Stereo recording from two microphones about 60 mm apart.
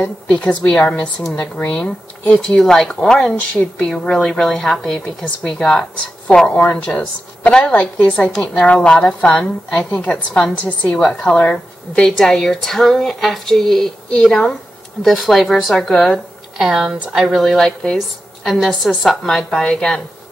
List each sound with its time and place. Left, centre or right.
0.3 s a woman's voice: left
16.5 s speech: centre
17.4 s a woman's voice: centre